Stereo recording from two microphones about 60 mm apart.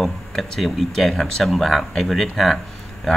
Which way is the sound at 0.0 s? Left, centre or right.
Centre.